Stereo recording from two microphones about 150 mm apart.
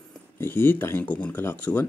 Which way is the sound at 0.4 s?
15° left (ahead or behind).